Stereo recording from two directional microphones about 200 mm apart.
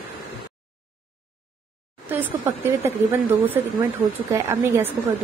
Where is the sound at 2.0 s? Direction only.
10° right (ahead or behind).